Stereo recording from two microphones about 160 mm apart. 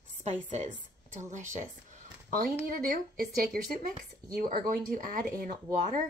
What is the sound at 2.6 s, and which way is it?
Speech, 65° right (ahead or behind).